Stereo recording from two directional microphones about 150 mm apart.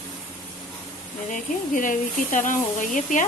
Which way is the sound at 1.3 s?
60° left (ahead or behind).